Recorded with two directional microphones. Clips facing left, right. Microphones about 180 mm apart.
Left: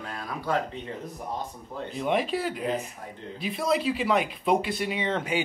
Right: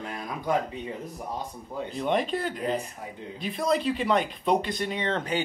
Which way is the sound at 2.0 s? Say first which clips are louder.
Even; 5° left (ahead or behind).